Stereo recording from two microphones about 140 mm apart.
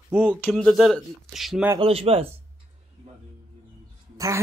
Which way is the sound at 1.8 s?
45° right (ahead or behind).